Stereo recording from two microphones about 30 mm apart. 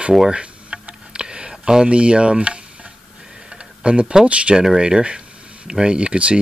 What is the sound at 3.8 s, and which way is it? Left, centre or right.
Speech, right.